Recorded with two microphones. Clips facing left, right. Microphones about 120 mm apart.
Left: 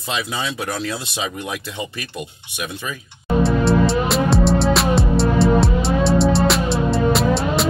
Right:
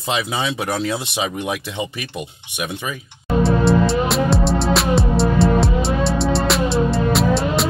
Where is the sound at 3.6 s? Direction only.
Centre (ahead or behind).